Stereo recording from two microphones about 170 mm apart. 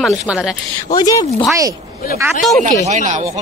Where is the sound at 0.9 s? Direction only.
20° left (ahead or behind).